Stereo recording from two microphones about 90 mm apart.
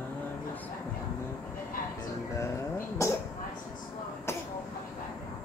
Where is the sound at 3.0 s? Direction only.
35° left (ahead or behind).